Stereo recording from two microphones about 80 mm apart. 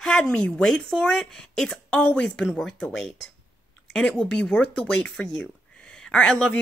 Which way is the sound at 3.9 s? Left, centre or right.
Centre.